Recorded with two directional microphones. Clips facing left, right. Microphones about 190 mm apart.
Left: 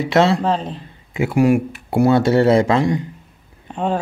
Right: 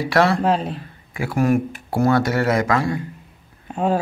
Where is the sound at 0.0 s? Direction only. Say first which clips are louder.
Left 2 dB; 25° left (ahead or behind).